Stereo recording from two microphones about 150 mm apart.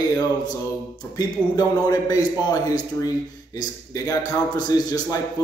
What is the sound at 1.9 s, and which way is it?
Speech, 25° left (ahead or behind).